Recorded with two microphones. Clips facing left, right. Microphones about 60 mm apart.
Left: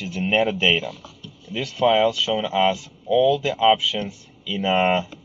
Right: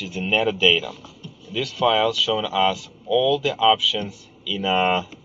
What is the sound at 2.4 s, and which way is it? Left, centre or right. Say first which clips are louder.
Speech: left 1 dB; centre.